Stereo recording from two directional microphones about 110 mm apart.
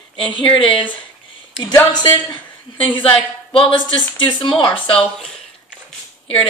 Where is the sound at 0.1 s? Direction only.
50° left (ahead or behind).